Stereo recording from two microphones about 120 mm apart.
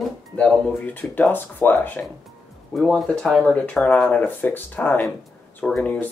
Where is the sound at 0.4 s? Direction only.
5° left (ahead or behind).